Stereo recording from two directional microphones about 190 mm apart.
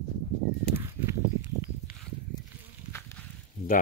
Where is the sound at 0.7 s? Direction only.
15° right (ahead or behind).